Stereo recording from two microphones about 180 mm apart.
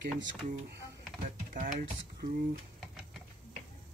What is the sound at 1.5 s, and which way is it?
Speech, 50° right (ahead or behind).